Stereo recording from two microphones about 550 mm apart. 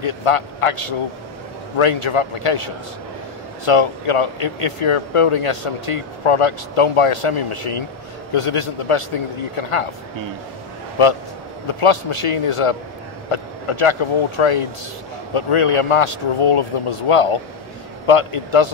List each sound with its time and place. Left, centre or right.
0.0 s speech: left
11.6 s speech: left